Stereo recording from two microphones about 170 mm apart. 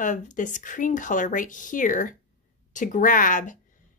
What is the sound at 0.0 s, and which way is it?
Speech, 50° left (ahead or behind).